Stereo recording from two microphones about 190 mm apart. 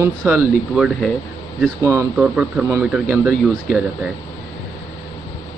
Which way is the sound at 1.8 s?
15° right (ahead or behind).